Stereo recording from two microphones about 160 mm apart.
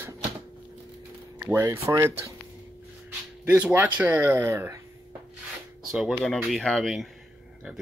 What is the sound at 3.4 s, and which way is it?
Speech, 10° right (ahead or behind).